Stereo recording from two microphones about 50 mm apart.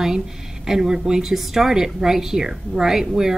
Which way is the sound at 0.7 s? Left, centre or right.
Centre.